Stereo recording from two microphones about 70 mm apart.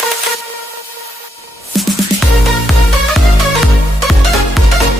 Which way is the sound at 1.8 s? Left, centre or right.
Centre.